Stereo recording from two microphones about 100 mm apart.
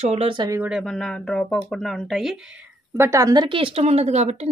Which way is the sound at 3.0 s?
35° right (ahead or behind).